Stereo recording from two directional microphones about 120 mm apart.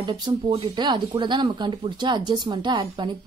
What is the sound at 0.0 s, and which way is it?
Speech, 45° right (ahead or behind).